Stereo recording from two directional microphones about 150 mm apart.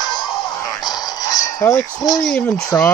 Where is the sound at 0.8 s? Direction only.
25° left (ahead or behind).